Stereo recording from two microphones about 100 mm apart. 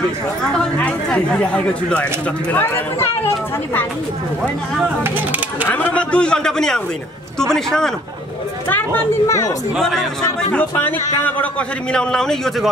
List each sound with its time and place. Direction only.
0.6 s speech: 10° left (ahead or behind)
4.8 s speech: 15° right (ahead or behind)
5.7 s a man's voice: 15° left (ahead or behind)
8.6 s speech: 20° left (ahead or behind)
9.2 s speech: 30° left (ahead or behind)
9.8 s a man's voice: 5° left (ahead or behind)
10.5 s a man's voice: 20° left (ahead or behind)